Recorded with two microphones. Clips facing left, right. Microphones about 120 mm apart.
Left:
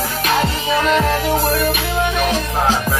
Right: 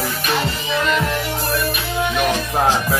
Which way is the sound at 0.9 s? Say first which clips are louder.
Left 5 dB; 40° left (ahead or behind).